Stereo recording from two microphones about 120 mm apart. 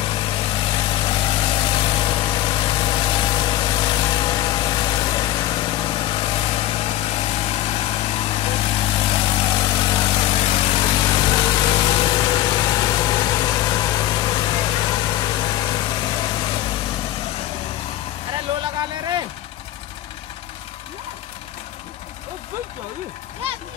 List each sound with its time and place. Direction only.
0.0 s vehicle: 45° left (ahead or behind)
10.4 s vehicle: 55° left (ahead or behind); by 14.5 s 35° left (ahead or behind)
15.3 s engine: 40° left (ahead or behind)
18.6 s a sound: 40° right (ahead or behind)